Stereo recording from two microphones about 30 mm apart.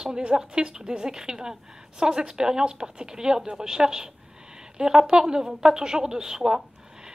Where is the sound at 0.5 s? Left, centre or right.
Right.